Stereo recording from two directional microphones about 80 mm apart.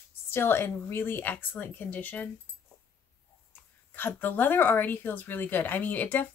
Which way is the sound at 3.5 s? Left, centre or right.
Left.